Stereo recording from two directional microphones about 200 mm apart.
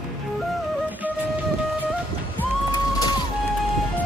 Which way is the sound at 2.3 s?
20° left (ahead or behind).